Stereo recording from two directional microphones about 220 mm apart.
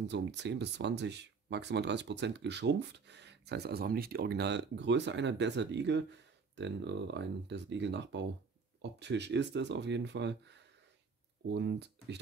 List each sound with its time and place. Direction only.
0.1 s speech: 50° right (ahead or behind)